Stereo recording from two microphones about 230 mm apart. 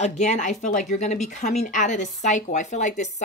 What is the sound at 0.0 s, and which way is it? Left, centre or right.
Speech, left.